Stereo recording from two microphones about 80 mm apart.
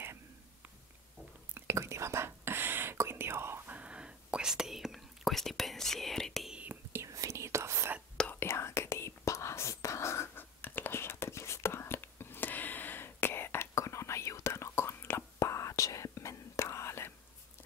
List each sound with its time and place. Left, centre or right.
0.0 s a sound: right
1.5 s whispering: right
3.7 s whispering: centre
6.7 s whispering: right
7.1 s whispering: right
8.3 s whispering: left
13.7 s whispering: left